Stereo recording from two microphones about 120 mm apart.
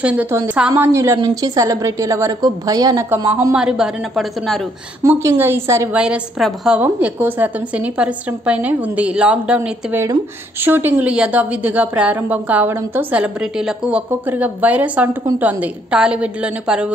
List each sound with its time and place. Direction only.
0.0 s a woman's voice: 10° right (ahead or behind); by 3.1 s 35° right (ahead or behind)
3.5 s a woman's voice: 5° right (ahead or behind)
5.0 s a woman's voice: 25° right (ahead or behind)
5.9 s a woman's voice: 10° right (ahead or behind)
6.8 s a woman's voice: 15° right (ahead or behind)
10.6 s a woman's voice: 15° right (ahead or behind)